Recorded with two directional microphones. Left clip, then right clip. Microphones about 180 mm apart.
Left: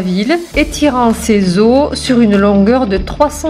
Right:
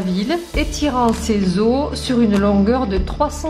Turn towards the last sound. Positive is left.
turn(degrees=20)  # may be behind; listen again after turning